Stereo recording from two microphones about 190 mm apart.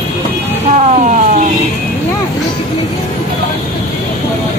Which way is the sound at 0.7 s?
40° right (ahead or behind).